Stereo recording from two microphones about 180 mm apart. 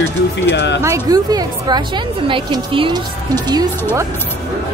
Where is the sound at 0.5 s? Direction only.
75° left (ahead or behind).